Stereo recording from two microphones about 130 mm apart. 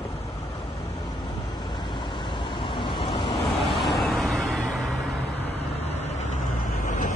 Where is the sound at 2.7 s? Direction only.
40° left (ahead or behind).